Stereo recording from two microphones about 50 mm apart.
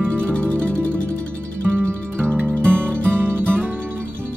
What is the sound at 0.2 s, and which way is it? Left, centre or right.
Music, left.